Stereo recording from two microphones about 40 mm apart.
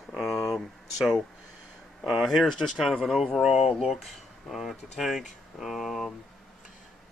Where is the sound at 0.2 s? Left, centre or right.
Centre.